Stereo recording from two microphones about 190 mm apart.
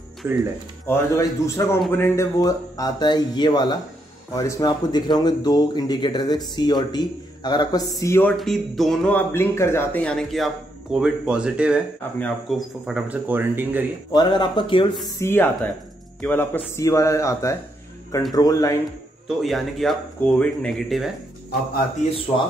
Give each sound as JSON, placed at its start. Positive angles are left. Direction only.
{"t": 0.2, "sound": "speech", "side_deg": -15}
{"t": 0.8, "sound": "speech", "side_deg": 15}
{"t": 8.4, "sound": "speech", "side_deg": 0}
{"t": 14.1, "sound": "speech", "side_deg": 25}
{"t": 15.0, "sound": "speech", "side_deg": 15}
{"t": 19.2, "sound": "speech", "side_deg": 0}